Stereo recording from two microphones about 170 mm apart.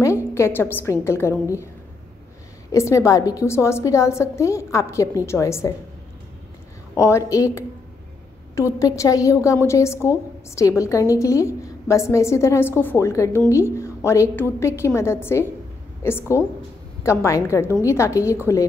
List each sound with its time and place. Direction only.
0.0 s a woman's voice: 15° left (ahead or behind)
2.7 s a woman's voice: 15° left (ahead or behind)
7.0 s a woman's voice: 15° left (ahead or behind)